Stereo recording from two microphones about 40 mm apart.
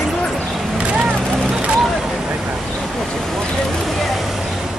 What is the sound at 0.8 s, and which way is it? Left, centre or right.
Vehicle, right.